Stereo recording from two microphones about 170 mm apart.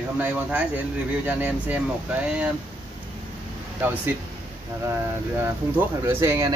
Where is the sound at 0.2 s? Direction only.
10° right (ahead or behind).